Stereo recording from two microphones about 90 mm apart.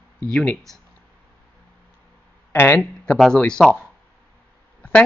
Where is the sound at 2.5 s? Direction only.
25° left (ahead or behind).